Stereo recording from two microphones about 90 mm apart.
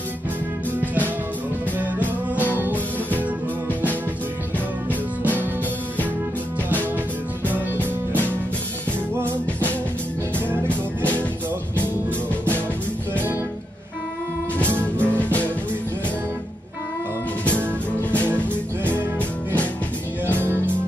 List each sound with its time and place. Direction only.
2.3 s music: 20° right (ahead or behind)
10.4 s music: 25° right (ahead or behind)
14.8 s music: 15° left (ahead or behind)
17.5 s music: 15° left (ahead or behind)
20.3 s music: 25° right (ahead or behind)